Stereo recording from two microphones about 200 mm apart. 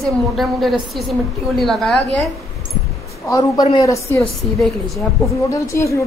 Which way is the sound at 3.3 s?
20° left (ahead or behind).